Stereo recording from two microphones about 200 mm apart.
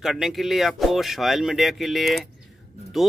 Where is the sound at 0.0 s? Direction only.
Centre (ahead or behind).